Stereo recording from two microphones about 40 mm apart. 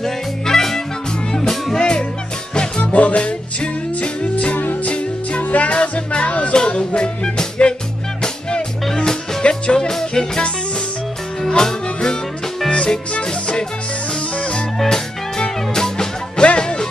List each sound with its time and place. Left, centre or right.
0.0 s music: centre
1.8 s music: left
2.8 s music: left
8.8 s music: centre
9.4 s music: left
14.8 s music: centre